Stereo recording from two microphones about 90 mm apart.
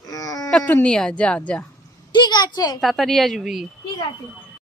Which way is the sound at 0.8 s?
10° left (ahead or behind).